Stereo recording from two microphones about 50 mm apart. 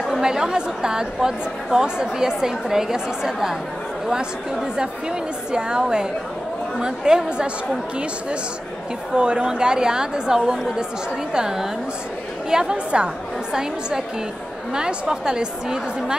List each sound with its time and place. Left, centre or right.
0.0 s a woman's voice: centre
9.1 s a woman's voice: centre